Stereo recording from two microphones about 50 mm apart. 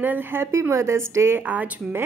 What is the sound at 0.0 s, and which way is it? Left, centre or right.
A woman's voice, right.